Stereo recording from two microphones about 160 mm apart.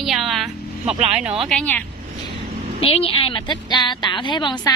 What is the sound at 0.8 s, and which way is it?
Speech, 45° right (ahead or behind).